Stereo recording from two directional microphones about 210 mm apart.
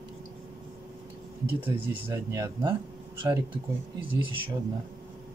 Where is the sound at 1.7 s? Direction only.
15° right (ahead or behind).